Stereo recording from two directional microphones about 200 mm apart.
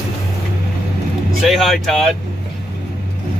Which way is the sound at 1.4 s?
Centre (ahead or behind).